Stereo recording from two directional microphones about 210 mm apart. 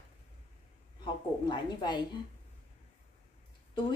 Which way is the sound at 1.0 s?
20° left (ahead or behind).